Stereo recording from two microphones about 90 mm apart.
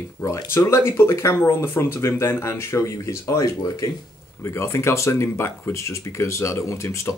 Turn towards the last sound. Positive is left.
turn(degrees=35)  # may be behind; listen again after turning